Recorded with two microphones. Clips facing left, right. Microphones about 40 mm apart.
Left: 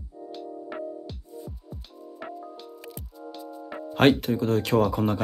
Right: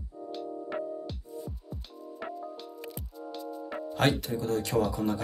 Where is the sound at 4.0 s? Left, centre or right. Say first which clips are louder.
Left 8 dB; left.